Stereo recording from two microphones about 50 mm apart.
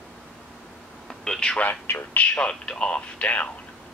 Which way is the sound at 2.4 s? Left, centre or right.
Centre.